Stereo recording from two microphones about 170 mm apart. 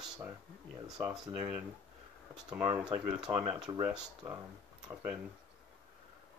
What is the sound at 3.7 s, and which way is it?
Speech, 20° right (ahead or behind).